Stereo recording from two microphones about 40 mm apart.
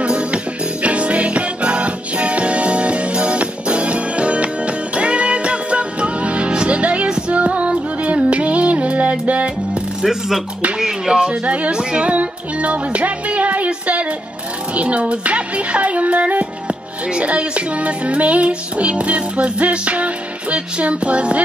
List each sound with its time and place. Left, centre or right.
0.0 s music: right
10.0 s speech: centre
10.8 s a sound: centre
11.4 s music: right
11.7 s music: right
12.1 s music: right